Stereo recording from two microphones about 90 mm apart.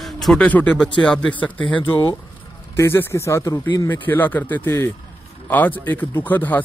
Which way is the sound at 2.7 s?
30° left (ahead or behind).